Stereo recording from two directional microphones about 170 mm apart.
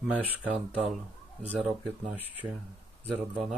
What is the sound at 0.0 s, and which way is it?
Speech, 5° right (ahead or behind).